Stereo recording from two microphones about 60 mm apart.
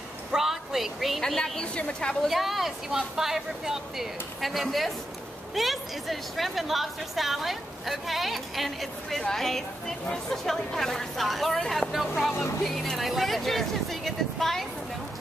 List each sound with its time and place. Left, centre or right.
0.3 s a sound: centre
1.2 s a woman's voice: centre
2.2 s speech: centre